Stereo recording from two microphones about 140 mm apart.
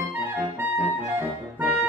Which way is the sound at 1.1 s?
10° right (ahead or behind).